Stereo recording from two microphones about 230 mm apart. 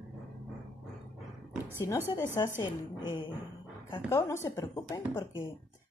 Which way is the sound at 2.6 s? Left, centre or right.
Centre.